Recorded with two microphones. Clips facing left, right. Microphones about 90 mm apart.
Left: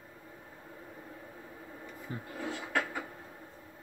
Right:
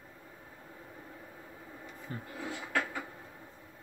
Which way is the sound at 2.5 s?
Centre (ahead or behind).